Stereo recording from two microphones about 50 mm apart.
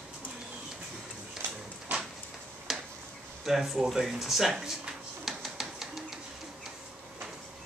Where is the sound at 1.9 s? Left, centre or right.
Right.